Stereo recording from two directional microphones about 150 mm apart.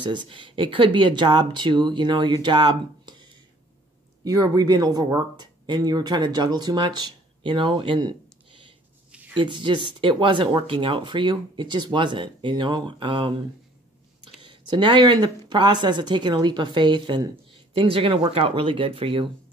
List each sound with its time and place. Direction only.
0.0 s speech: 30° right (ahead or behind)
14.4 s speech: 30° right (ahead or behind)